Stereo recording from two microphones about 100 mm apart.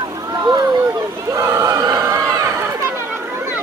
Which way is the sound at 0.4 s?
40° right (ahead or behind).